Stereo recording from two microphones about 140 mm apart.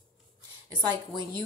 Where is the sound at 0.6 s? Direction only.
25° right (ahead or behind).